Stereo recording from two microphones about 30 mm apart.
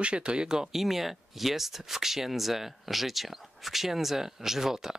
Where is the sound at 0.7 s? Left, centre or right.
Centre.